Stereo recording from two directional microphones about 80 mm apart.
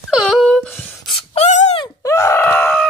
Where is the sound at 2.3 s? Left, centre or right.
Left.